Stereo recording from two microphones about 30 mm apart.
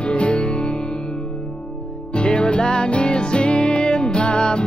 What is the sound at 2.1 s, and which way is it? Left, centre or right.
Music, left.